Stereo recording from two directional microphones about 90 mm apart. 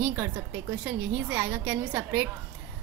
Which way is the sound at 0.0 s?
25° right (ahead or behind).